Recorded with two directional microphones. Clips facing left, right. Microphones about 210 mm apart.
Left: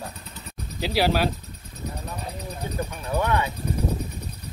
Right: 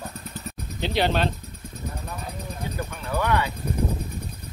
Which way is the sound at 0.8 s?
5° left (ahead or behind).